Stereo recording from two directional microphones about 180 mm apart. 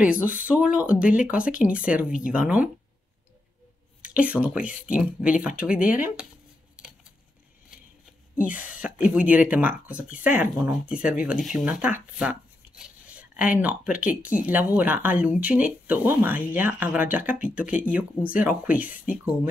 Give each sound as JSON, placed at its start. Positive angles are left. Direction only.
{"t": 0.0, "sound": "speech", "side_deg": -5}
{"t": 4.0, "sound": "speech", "side_deg": -5}
{"t": 8.5, "sound": "speech", "side_deg": 45}
{"t": 8.7, "sound": "speech", "side_deg": -5}
{"t": 12.2, "sound": "a sound", "side_deg": -5}
{"t": 14.3, "sound": "speech", "side_deg": -10}